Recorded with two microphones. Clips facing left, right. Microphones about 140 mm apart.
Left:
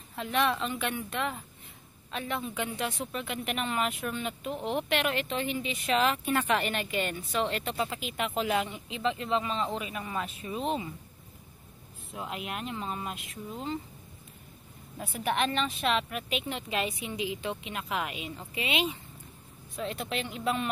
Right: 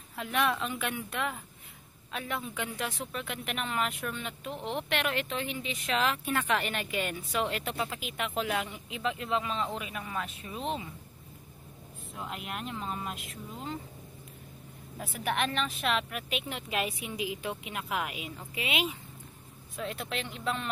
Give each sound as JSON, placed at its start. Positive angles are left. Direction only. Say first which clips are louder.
{"t": 0.1, "sound": "speech", "louder": "left 1 dB", "side_deg": -5}
{"t": 12.1, "sound": "speech", "louder": "left 2 dB", "side_deg": 0}
{"t": 15.0, "sound": "speech", "louder": "left 2 dB", "side_deg": 0}